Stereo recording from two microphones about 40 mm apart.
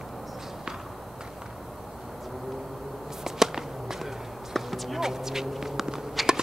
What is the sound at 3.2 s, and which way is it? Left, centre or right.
Walk, centre.